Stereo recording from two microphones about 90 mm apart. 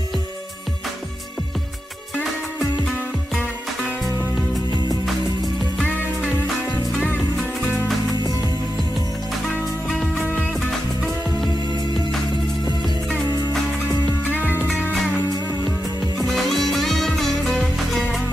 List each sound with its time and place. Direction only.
5.8 s music: 20° left (ahead or behind)
9.8 s music: 10° left (ahead or behind)
16.3 s music: centre (ahead or behind)